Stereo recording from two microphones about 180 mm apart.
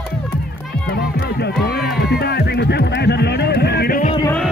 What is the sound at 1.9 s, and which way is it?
Music, 65° left (ahead or behind).